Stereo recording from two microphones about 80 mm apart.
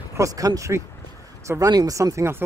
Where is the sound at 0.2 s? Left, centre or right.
Right.